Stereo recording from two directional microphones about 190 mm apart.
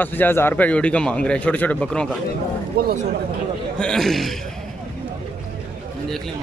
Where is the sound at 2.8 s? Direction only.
55° right (ahead or behind).